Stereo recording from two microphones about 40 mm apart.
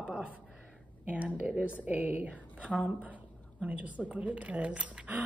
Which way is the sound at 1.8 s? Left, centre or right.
Right.